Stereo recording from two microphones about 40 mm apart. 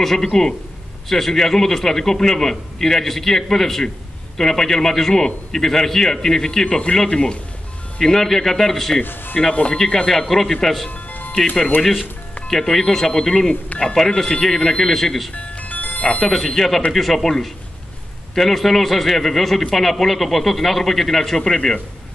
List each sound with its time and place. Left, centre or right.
0.0 s a man's voice: centre
7.1 s speech: left
8.0 s a man's voice: centre
9.0 s speech: left
9.5 s speech: left
10.0 s a man's voice: centre
10.9 s music: left
11.8 s a man's voice: centre
15.3 s music: left
16.3 s speech: centre